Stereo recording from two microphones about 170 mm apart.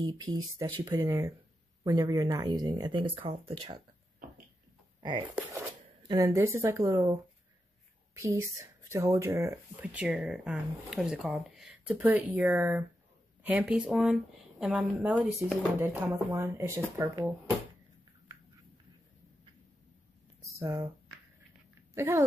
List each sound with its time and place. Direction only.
0.0 s speech: 25° right (ahead or behind)
6.0 s speech: 20° right (ahead or behind)
8.1 s speech: 15° right (ahead or behind)
20.5 s speech: 15° right (ahead or behind)
21.9 s a child's voice: 15° right (ahead or behind)